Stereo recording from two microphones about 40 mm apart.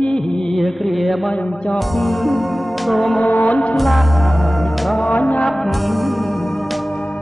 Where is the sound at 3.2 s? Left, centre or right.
Left.